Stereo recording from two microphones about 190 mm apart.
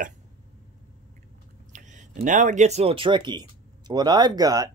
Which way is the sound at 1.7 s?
40° right (ahead or behind).